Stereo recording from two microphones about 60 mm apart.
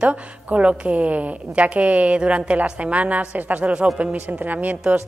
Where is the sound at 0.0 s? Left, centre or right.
Right.